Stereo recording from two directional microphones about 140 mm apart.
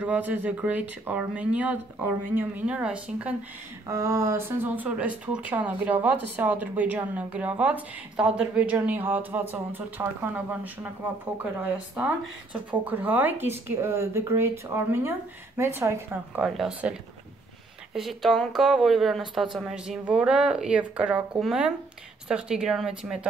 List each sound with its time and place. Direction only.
0.0 s speech: 10° right (ahead or behind)
3.8 s speech: 20° right (ahead or behind)
16.4 s speech: 5° right (ahead or behind)
17.9 s speech: centre (ahead or behind)